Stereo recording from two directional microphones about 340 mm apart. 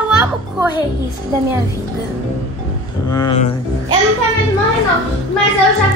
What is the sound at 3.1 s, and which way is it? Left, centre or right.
Speech, centre.